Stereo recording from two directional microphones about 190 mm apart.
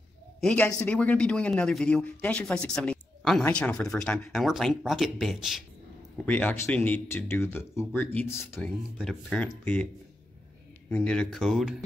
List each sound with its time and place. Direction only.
0.4 s speech: 5° left (ahead or behind)
8.5 s speech: centre (ahead or behind)
10.9 s speech: 5° left (ahead or behind)